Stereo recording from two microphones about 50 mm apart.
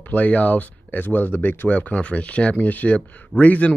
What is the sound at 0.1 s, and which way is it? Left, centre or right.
Speech, left.